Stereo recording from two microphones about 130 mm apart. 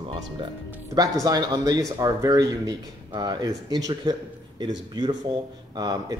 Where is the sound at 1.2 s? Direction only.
30° right (ahead or behind).